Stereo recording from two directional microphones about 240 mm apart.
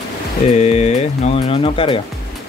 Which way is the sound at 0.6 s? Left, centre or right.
Left.